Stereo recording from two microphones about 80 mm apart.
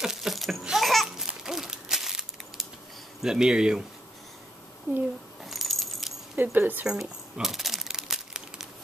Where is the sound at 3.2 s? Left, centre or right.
Centre.